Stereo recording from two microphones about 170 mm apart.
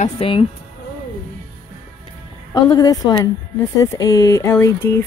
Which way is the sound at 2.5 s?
20° left (ahead or behind).